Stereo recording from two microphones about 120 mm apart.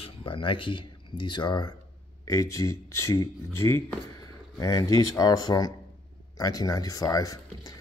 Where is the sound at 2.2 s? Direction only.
25° left (ahead or behind).